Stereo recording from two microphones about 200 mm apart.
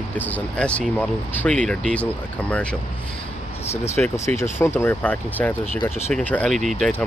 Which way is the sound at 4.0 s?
5° left (ahead or behind).